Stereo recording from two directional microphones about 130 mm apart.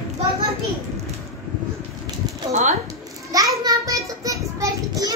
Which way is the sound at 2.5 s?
65° right (ahead or behind).